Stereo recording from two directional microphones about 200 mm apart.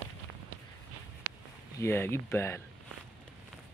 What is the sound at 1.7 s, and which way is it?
Speech, 10° left (ahead or behind).